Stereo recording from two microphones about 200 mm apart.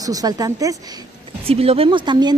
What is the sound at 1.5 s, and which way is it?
Speech, 30° right (ahead or behind).